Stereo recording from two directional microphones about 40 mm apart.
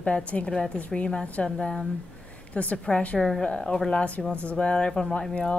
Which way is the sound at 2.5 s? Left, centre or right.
Left.